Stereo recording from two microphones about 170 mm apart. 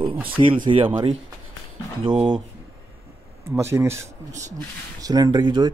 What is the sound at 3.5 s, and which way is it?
Speech, 15° right (ahead or behind).